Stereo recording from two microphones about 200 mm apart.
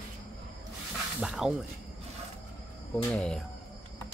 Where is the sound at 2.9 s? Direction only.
Centre (ahead or behind).